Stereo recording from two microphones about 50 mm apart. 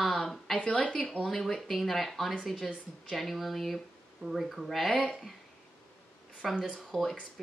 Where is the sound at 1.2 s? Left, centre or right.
Centre.